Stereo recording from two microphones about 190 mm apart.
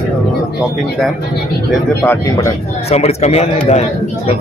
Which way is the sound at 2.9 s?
35° left (ahead or behind).